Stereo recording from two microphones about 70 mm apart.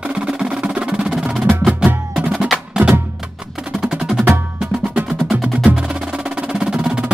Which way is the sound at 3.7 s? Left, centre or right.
Centre.